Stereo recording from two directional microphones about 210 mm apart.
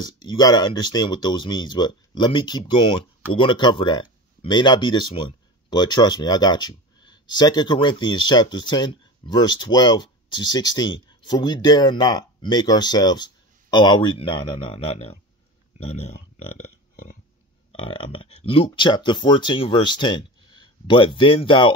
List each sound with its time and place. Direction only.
0.0 s speech: 20° left (ahead or behind)
17.7 s speech: 25° left (ahead or behind)